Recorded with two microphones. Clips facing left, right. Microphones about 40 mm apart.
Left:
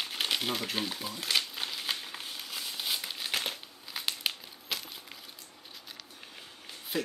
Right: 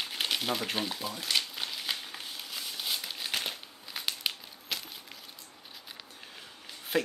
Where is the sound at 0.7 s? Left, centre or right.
Centre.